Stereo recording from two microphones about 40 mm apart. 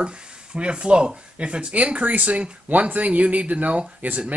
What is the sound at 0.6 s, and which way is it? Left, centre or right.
Speech, right.